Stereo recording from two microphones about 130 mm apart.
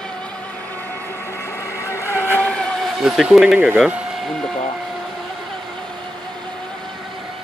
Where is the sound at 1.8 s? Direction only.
20° left (ahead or behind).